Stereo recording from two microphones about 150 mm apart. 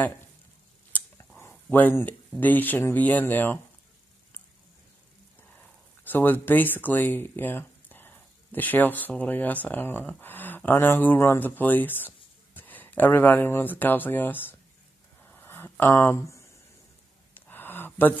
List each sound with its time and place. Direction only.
1.5 s speech: 10° left (ahead or behind)
5.6 s speech: 10° left (ahead or behind)
15.2 s a sound: 15° left (ahead or behind)